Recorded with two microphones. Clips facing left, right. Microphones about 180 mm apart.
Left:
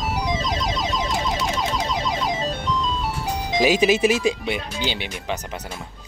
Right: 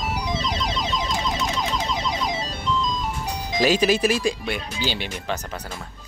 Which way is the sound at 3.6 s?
15° left (ahead or behind).